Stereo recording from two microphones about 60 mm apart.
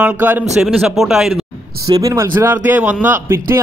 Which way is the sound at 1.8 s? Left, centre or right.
Right.